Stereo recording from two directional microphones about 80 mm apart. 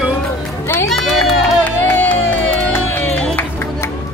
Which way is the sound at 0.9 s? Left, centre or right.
Centre.